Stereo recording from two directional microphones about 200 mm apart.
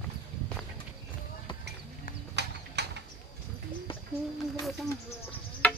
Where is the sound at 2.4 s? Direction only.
55° right (ahead or behind).